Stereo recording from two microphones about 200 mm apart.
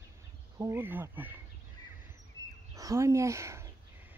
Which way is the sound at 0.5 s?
15° right (ahead or behind).